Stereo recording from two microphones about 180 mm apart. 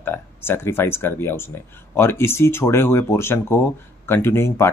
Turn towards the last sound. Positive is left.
turn(degrees=15)  # may be behind; listen again after turning